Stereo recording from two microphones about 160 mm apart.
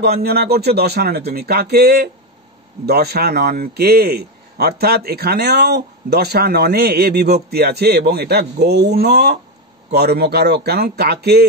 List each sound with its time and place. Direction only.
0.0 s a man's voice: 75° right (ahead or behind)